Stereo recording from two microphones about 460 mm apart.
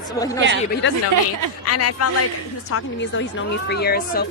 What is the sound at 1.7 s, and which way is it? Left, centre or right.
Speech, left.